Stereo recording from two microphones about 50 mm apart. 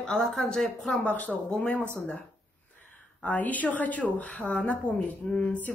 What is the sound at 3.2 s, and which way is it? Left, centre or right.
Speech, left.